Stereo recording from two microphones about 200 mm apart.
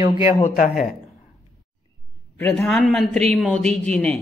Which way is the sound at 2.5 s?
Centre (ahead or behind).